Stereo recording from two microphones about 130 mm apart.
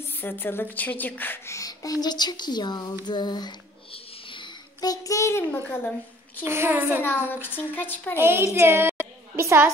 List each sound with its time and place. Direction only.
0.2 s a child's voice: 15° left (ahead or behind); by 3.0 s 30° left (ahead or behind)
3.1 s a sound: 35° left (ahead or behind); by 6.4 s 15° left (ahead or behind)
6.4 s a child's voice: 20° right (ahead or behind)
7.2 s speech: 15° left (ahead or behind)
8.2 s a child's voice: 20° right (ahead or behind)
8.5 s a sound: 20° right (ahead or behind)